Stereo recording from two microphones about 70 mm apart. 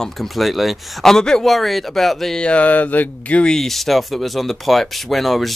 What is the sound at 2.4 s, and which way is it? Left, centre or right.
Speech, centre.